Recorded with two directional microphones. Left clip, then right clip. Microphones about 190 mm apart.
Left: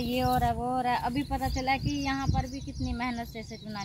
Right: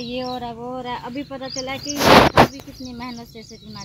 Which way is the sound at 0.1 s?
5° left (ahead or behind).